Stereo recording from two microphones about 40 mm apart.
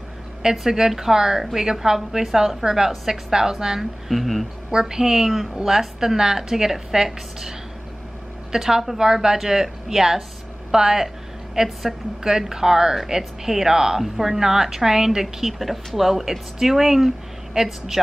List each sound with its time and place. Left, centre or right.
0.4 s a woman's voice: centre
4.1 s speech: centre
4.6 s a woman's voice: centre